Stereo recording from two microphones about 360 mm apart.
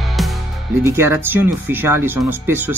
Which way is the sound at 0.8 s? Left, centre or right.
Centre.